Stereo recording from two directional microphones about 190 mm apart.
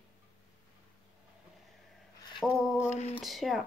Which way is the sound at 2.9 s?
35° left (ahead or behind).